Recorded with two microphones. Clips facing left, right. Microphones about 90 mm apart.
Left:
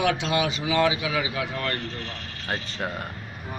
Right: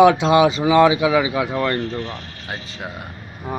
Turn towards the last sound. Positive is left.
turn(degrees=-5)  # may be behind; listen again after turning